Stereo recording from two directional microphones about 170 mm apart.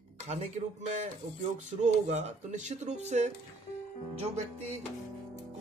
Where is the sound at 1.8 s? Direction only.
40° right (ahead or behind).